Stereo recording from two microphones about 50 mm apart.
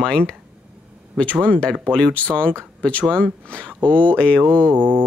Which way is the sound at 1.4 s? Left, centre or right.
Left.